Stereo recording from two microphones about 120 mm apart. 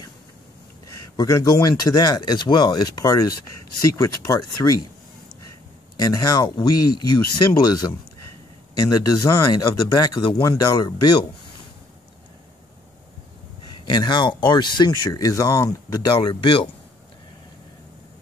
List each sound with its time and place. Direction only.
0.8 s speech: 30° left (ahead or behind)
5.9 s speech: 30° left (ahead or behind)
13.8 s speech: 40° left (ahead or behind)